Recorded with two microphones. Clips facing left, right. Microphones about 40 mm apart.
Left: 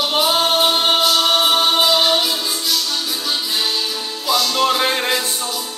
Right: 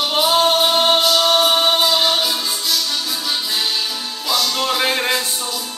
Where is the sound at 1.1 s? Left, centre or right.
Centre.